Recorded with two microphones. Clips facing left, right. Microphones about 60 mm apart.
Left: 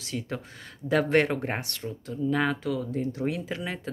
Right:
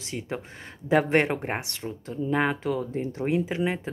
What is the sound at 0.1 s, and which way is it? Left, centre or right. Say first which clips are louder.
Speech: right 1 dB; right.